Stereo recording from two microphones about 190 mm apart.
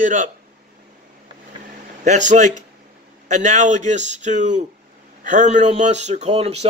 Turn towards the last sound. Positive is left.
turn(degrees=-35)  # may be behind; listen again after turning